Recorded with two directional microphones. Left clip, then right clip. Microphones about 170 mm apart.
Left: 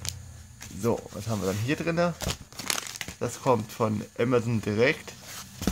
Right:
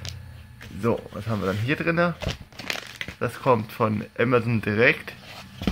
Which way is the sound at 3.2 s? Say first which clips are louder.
Right 4 dB; 15° left (ahead or behind).